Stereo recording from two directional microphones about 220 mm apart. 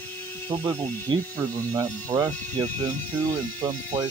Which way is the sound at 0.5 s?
20° right (ahead or behind).